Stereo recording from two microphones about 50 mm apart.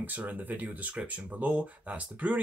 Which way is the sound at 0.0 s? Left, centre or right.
Right.